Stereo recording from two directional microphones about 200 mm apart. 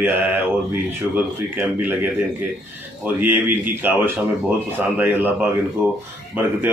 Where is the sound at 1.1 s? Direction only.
10° right (ahead or behind).